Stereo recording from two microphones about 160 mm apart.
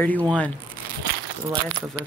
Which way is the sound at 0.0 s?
10° left (ahead or behind).